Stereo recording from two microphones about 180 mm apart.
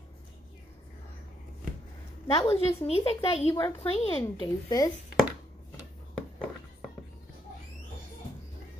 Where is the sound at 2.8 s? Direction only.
35° left (ahead or behind).